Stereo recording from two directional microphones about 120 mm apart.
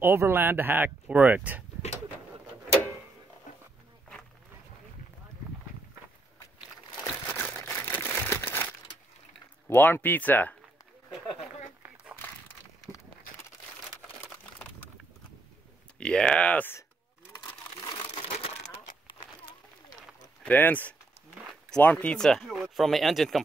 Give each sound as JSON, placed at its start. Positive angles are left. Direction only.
{"t": 0.0, "sound": "speech", "side_deg": -20}
{"t": 3.5, "sound": "wild animals", "side_deg": 90}
{"t": 7.2, "sound": "crumpling", "side_deg": 15}
{"t": 9.7, "sound": "speech", "side_deg": 20}
{"t": 16.0, "sound": "speech", "side_deg": 5}
{"t": 17.8, "sound": "crushing", "side_deg": 30}
{"t": 18.3, "sound": "a sound", "side_deg": 65}
{"t": 20.4, "sound": "speech", "side_deg": 15}